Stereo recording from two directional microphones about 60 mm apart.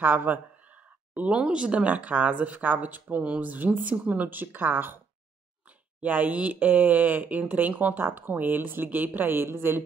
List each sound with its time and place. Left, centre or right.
0.0 s speech: right